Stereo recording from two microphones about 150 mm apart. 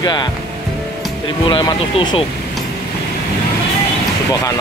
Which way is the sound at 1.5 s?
30° left (ahead or behind).